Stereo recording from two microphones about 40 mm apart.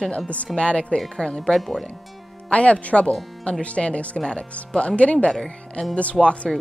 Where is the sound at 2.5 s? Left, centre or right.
Left.